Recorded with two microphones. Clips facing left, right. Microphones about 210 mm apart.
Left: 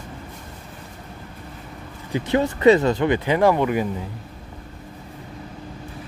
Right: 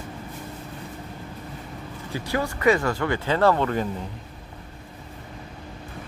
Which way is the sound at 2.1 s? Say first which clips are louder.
Left 6 dB; 20° left (ahead or behind).